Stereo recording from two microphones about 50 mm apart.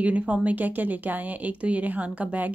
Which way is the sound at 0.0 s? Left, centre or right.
Right.